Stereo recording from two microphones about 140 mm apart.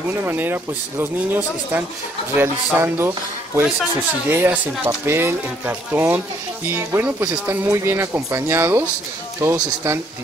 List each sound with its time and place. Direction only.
0.1 s speech: 15° right (ahead or behind)